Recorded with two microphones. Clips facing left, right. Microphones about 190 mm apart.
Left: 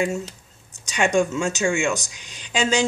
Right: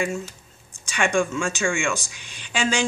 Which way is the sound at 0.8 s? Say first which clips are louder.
Left 2 dB; 20° left (ahead or behind).